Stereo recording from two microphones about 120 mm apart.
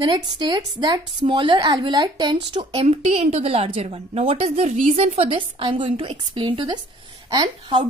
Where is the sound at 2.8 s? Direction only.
55° right (ahead or behind).